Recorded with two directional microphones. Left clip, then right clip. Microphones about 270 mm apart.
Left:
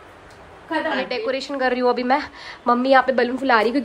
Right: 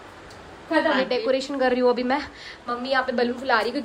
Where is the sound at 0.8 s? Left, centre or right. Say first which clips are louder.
Even; centre.